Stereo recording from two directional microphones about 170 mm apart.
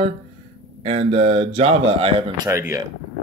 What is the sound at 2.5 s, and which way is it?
Speech, 15° right (ahead or behind).